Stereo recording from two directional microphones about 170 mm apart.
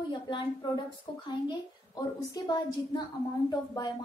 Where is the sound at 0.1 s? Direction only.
25° left (ahead or behind).